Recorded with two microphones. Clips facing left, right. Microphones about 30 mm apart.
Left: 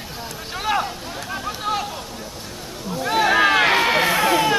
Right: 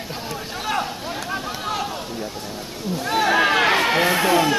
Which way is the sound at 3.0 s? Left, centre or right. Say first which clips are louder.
Left 2 dB; centre.